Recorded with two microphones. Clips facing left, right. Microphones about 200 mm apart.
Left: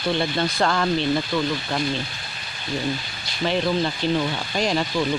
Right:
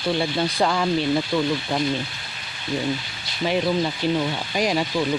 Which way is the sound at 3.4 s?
10° right (ahead or behind).